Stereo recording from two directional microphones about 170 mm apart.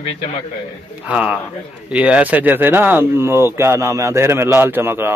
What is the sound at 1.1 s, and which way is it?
Speech, 5° right (ahead or behind).